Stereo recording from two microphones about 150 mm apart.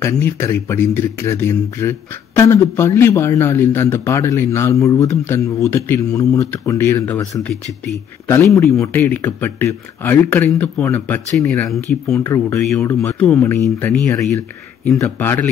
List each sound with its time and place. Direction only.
0.0 s speech: 15° left (ahead or behind)
15.0 s speech: 15° left (ahead or behind)